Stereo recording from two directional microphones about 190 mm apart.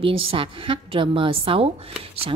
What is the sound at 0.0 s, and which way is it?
A woman's voice, 30° right (ahead or behind).